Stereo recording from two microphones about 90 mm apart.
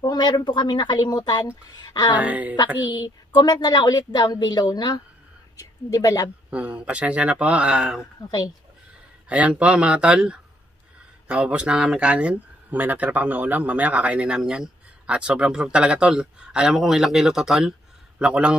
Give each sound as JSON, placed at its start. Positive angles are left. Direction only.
{"t": 0.0, "sound": "a woman's voice", "side_deg": 50}
{"t": 2.1, "sound": "speech", "side_deg": -15}
{"t": 2.9, "sound": "a woman's voice", "side_deg": 50}
{"t": 5.6, "sound": "a woman's voice", "side_deg": 40}
{"t": 6.5, "sound": "speech", "side_deg": -15}
{"t": 8.2, "sound": "a woman's voice", "side_deg": 50}
{"t": 9.3, "sound": "speech", "side_deg": -15}